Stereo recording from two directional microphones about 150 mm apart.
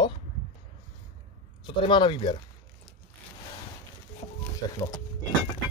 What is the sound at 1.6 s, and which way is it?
Speech, 30° left (ahead or behind).